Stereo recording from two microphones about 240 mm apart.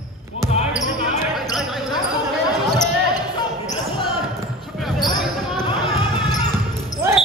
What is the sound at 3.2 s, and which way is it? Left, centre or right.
Basketball bounce, centre.